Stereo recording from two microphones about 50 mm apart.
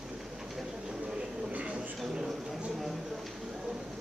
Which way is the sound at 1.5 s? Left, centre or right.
Right.